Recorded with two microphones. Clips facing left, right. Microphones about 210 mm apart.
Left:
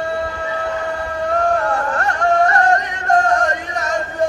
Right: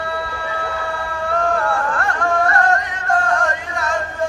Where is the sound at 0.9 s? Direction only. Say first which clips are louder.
Left 1 dB; 40° left (ahead or behind).